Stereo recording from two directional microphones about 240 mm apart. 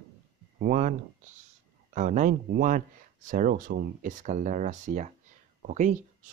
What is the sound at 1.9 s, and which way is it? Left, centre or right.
Speech, right.